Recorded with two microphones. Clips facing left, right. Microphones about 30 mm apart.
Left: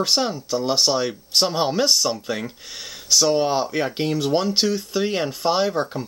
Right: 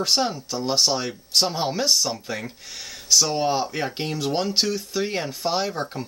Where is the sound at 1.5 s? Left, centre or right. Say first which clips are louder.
Left 3 dB; left.